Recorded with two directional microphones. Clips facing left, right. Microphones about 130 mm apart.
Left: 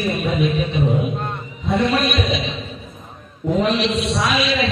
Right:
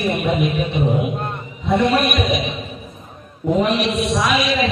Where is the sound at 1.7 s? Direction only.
15° right (ahead or behind).